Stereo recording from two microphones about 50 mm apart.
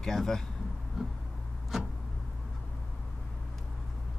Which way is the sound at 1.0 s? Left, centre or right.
Centre.